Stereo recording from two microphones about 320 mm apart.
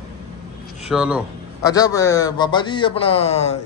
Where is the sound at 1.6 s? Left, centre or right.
Centre.